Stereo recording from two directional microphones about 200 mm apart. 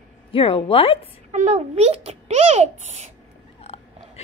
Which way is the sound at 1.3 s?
35° right (ahead or behind).